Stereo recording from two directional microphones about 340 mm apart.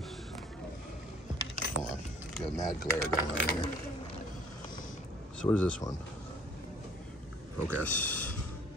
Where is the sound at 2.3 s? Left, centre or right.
Centre.